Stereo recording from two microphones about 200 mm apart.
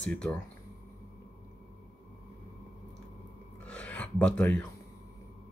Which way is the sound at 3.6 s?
5° left (ahead or behind).